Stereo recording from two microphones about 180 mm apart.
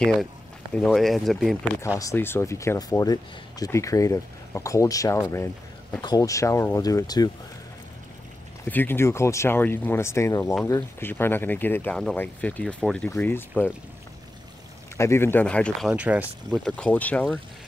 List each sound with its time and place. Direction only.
0.7 s speech: 5° left (ahead or behind)
2.0 s speech: 15° left (ahead or behind)
8.6 s speech: 10° left (ahead or behind)
15.0 s speech: 15° left (ahead or behind)
15.9 s speech: 5° right (ahead or behind)
16.4 s speech: 5° left (ahead or behind)